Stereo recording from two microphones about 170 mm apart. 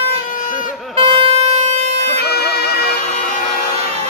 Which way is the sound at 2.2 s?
70° left (ahead or behind).